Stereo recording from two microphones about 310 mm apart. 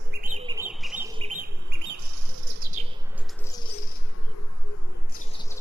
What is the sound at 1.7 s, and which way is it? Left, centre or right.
Bird, right.